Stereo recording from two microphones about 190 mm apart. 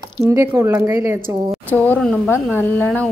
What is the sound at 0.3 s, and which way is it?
Speech, 15° right (ahead or behind).